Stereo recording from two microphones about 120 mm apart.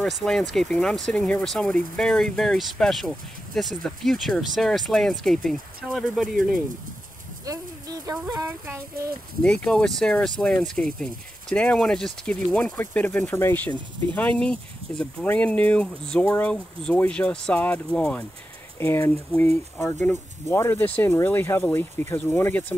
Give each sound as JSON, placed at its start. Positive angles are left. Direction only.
{"t": 0.0, "sound": "speech", "side_deg": 5}
{"t": 7.4, "sound": "speech", "side_deg": -30}
{"t": 9.4, "sound": "speech", "side_deg": 5}
{"t": 18.8, "sound": "speech", "side_deg": 20}